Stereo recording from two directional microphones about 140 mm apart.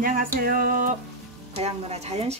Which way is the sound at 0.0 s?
90° right.